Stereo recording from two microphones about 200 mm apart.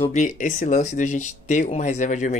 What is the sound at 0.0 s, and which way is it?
Speech, 35° left (ahead or behind).